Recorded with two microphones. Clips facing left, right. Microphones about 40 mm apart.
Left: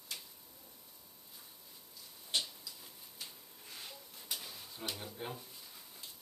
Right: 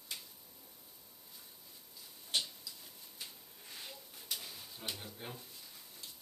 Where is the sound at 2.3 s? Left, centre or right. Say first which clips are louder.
Even; centre.